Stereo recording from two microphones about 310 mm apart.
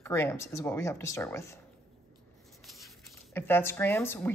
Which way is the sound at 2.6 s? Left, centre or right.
Centre.